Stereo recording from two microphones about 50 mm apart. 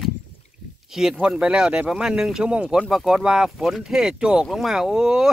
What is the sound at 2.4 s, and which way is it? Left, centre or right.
Speech, right.